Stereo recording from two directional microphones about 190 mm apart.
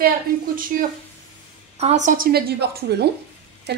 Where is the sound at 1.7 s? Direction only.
35° right (ahead or behind); by 3.0 s 60° right (ahead or behind).